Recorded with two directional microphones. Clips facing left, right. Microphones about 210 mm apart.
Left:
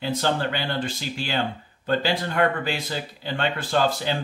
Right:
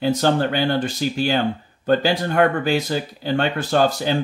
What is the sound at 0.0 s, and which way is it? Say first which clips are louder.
Speech: right 6 dB; 45° right (ahead or behind).